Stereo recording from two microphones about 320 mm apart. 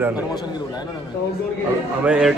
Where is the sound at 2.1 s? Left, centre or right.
Centre.